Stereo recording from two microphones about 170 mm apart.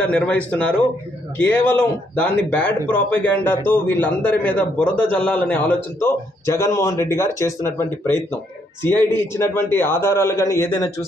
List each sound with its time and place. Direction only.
0.0 s a man's voice: 10° left (ahead or behind)